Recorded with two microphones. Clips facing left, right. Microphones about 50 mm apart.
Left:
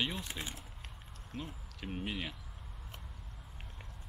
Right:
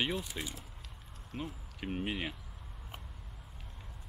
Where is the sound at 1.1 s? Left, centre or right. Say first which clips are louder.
Right 3 dB; centre.